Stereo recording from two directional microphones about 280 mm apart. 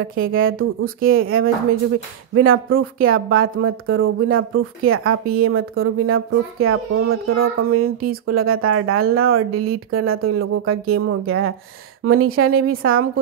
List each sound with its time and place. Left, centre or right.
0.2 s speech: right